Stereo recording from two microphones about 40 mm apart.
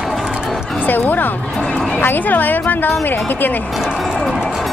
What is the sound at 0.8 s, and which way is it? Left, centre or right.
A woman's voice, left.